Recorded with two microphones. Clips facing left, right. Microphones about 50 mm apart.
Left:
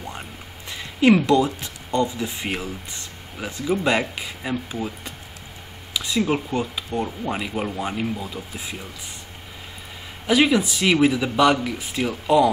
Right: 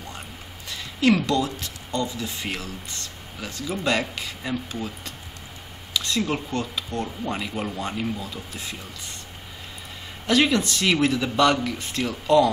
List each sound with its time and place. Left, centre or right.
0.7 s speech: centre
10.2 s speech: centre